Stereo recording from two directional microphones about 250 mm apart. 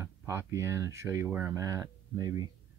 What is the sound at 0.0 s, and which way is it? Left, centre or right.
Speech, centre.